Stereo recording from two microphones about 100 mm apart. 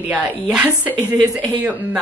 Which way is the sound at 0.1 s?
10° right (ahead or behind).